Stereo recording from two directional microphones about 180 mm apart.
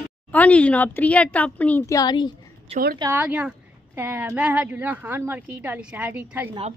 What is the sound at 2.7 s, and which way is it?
Speech, 35° right (ahead or behind).